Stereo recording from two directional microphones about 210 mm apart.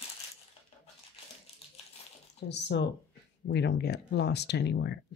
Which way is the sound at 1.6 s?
30° left (ahead or behind).